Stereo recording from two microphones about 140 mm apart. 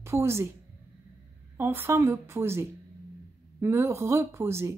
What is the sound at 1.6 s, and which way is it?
Speech, 15° right (ahead or behind).